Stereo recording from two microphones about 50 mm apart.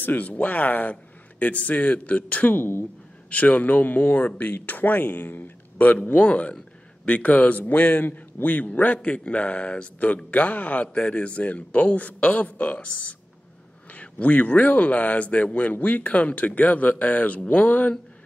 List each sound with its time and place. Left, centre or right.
0.0 s a man's voice: left
2.6 s speech: left
3.3 s a man's voice: left
13.9 s a man's voice: left